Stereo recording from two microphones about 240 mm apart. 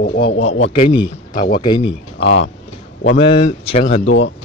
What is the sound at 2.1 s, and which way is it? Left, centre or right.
Speech, left.